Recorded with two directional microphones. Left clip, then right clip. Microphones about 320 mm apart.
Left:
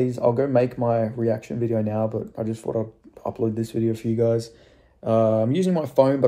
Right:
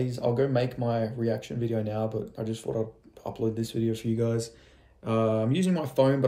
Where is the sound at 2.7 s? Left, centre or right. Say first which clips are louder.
Left 4 dB; left.